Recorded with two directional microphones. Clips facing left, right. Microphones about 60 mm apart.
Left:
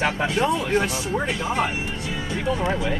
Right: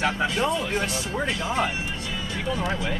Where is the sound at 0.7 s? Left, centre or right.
Centre.